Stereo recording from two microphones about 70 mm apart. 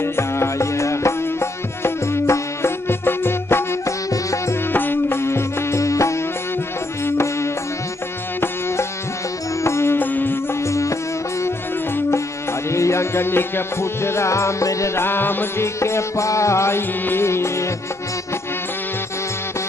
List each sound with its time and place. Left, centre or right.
0.0 s music: left
4.1 s music: left
4.7 s music: left
9.6 s music: left
9.9 s music: left
10.7 s music: left
12.7 s music: left
15.0 s music: left